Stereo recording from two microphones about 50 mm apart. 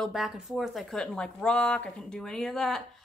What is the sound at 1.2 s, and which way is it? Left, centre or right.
A woman's voice, centre.